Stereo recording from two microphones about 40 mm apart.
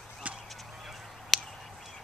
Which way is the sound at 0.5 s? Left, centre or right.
Centre.